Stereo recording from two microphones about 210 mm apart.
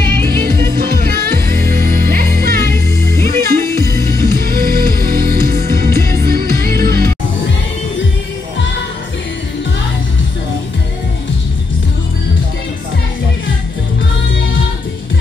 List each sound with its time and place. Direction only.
0.0 s music: 45° right (ahead or behind)